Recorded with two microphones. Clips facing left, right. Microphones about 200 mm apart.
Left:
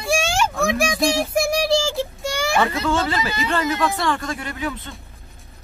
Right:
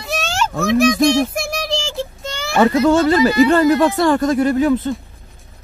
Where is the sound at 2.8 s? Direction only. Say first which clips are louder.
Right 10 dB; 45° right (ahead or behind).